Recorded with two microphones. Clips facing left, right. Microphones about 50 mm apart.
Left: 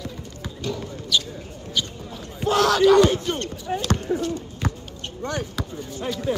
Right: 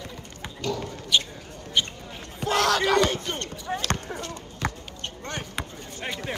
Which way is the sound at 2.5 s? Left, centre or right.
Right.